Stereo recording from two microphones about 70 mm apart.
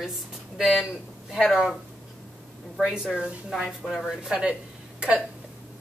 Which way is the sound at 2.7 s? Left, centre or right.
Centre.